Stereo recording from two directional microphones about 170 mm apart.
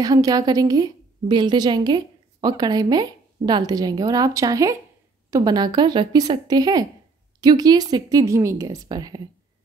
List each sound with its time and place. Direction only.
0.0 s a woman's voice: 20° right (ahead or behind)